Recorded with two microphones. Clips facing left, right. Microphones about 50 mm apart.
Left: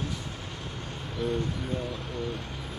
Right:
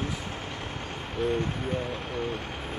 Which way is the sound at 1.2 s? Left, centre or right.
Right.